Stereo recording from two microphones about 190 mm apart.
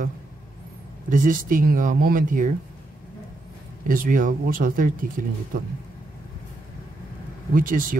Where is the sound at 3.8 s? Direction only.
45° right (ahead or behind).